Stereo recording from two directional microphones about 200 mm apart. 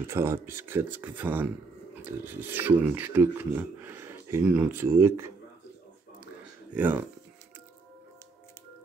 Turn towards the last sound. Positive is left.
turn(degrees=-10)  # may be behind; listen again after turning